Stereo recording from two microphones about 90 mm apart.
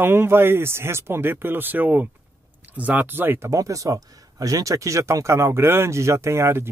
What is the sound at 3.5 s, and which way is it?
Speech, 40° right (ahead or behind).